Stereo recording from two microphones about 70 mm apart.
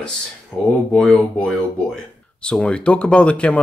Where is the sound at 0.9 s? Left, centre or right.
Centre.